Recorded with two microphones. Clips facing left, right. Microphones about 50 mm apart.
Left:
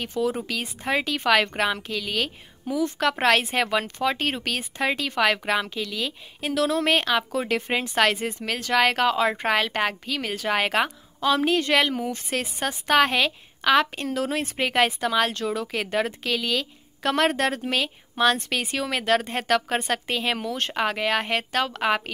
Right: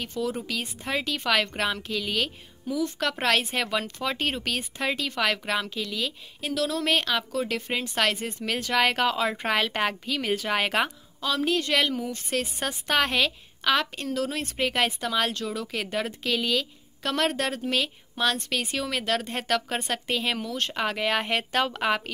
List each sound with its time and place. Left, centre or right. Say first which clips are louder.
0.0 s a woman's voice: left 4 dB; centre
6.4 s a woman's voice: left 4 dB; left
8.5 s a woman's voice: left 2 dB; centre
11.1 s a woman's voice: left 4 dB; left; by 21.8 s centre
21.8 s a woman's voice: left 2 dB; centre